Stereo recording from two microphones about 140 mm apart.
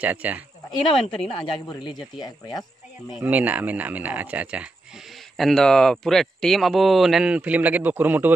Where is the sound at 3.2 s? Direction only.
10° right (ahead or behind).